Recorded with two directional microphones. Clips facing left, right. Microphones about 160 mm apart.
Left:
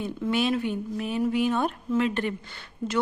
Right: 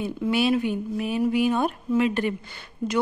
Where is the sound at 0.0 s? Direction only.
10° right (ahead or behind).